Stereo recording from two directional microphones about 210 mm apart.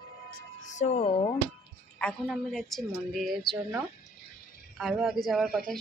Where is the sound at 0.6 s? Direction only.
35° left (ahead or behind).